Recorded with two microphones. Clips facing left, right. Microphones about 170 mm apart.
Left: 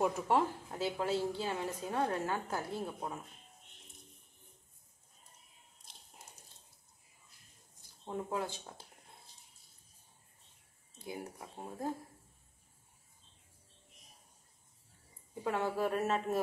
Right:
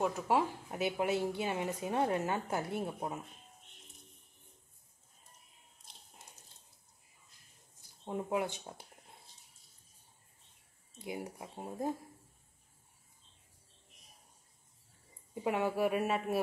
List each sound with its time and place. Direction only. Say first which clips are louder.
0.0 s a woman's voice: left 1 dB; 5° right (ahead or behind)
0.7 s a woman's voice: right 2 dB; 15° right (ahead or behind)
8.0 s a woman's voice: right 3 dB; 15° right (ahead or behind)
11.0 s speech: right 2 dB; 20° right (ahead or behind)
15.4 s a woman's voice: right 2 dB; 15° right (ahead or behind)